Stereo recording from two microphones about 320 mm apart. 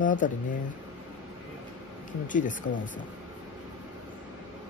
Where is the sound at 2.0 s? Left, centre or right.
Left.